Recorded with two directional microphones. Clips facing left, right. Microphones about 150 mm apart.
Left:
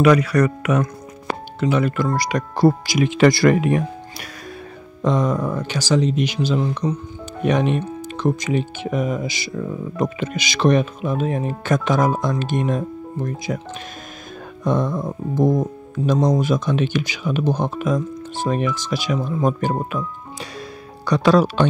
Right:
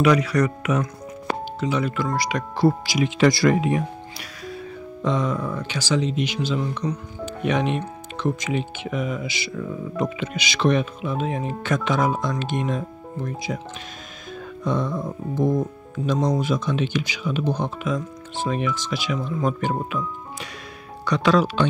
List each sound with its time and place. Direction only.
0.0 s speech: 55° left (ahead or behind)
2.0 s speech: 45° left (ahead or behind)
5.0 s speech: 45° left (ahead or behind)
14.6 s speech: 45° left (ahead or behind)
21.0 s speech: 35° left (ahead or behind)